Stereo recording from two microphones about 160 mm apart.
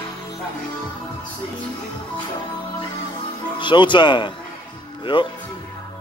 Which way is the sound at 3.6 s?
30° left (ahead or behind).